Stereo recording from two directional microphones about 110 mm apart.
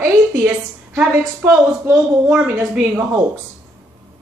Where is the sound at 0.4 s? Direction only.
10° right (ahead or behind).